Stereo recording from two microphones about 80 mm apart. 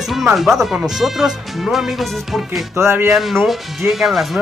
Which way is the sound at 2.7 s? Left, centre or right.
Right.